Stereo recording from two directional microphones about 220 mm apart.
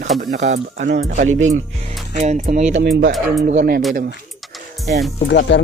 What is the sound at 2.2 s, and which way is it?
Speech, 30° right (ahead or behind).